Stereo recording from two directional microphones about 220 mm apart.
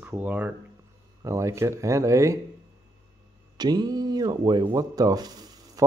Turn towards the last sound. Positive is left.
turn(degrees=-15)  # may be behind; listen again after turning